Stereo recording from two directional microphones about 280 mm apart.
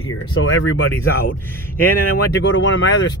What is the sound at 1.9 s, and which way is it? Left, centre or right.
Speech, left.